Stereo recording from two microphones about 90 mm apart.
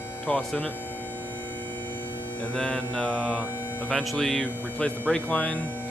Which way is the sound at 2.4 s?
15° left (ahead or behind).